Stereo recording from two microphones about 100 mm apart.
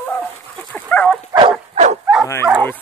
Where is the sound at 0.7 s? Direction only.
15° left (ahead or behind).